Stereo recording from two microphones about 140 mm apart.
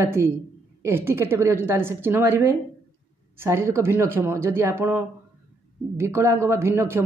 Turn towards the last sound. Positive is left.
turn(degrees=-15)  # may be behind; listen again after turning